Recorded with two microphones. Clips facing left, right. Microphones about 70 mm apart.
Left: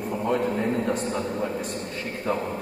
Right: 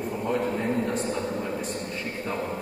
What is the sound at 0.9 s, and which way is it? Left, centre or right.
Speech, left.